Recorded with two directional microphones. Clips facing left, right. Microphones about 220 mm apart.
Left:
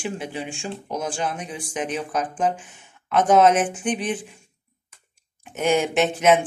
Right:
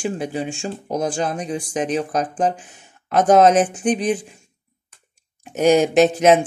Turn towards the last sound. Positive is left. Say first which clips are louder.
# right 5 dB
turn(degrees=-40)  # may be behind; listen again after turning